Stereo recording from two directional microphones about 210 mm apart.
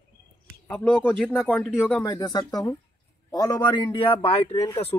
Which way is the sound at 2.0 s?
20° left (ahead or behind).